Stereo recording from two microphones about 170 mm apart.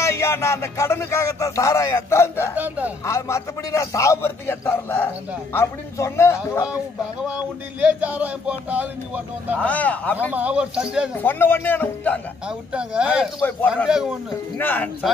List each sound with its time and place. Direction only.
0.0 s speech: 15° left (ahead or behind)
2.5 s speech: 10° right (ahead or behind)
3.1 s speech: 15° left (ahead or behind)
7.8 s speech: 10° right (ahead or behind)
9.6 s speech: 10° left (ahead or behind)
10.3 s speech: 5° right (ahead or behind)
11.1 s speech: 10° left (ahead or behind)
12.4 s speech: 5° right (ahead or behind)
13.4 s speech: 10° left (ahead or behind)
13.8 s speech: 5° right (ahead or behind)
14.6 s speech: 10° left (ahead or behind)